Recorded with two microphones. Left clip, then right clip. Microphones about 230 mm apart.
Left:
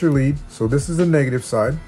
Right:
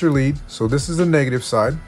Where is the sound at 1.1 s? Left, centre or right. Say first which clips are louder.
Right 2 dB; centre.